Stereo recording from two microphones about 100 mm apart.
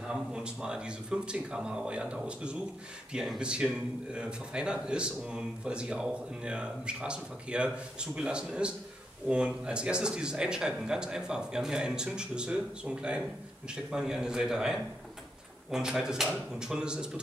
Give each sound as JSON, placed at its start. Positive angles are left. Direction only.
{"t": 0.1, "sound": "speech", "side_deg": -10}